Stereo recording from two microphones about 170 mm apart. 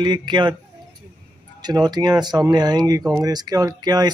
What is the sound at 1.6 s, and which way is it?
Speech, 25° right (ahead or behind).